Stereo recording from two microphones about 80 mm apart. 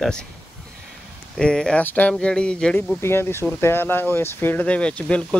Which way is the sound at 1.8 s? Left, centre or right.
Centre.